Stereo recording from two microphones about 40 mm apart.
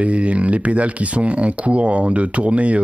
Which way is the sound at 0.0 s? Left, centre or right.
Right.